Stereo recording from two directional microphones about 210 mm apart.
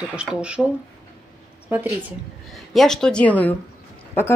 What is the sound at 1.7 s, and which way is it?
Speech, 10° right (ahead or behind).